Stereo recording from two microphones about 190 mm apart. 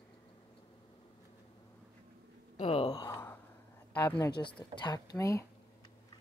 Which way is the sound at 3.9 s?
10° left (ahead or behind).